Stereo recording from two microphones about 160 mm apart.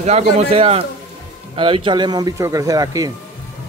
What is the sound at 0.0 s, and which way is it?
A woman's voice, 40° right (ahead or behind).